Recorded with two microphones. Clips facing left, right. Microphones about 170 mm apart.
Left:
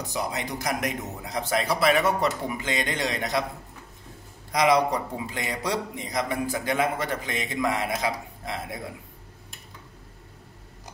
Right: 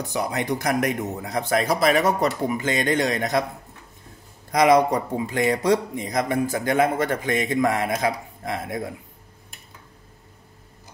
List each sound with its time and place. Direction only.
0.1 s speech: 60° right (ahead or behind)
4.5 s speech: 50° right (ahead or behind)